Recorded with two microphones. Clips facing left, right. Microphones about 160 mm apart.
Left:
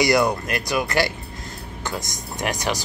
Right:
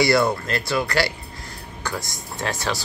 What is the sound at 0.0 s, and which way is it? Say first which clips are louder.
Speech: even; 15° left (ahead or behind).